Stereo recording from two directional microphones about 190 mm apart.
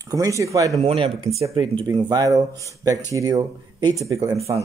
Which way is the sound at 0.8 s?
30° right (ahead or behind).